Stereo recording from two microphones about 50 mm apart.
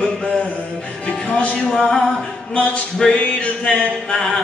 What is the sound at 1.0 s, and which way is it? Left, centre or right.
Music, left.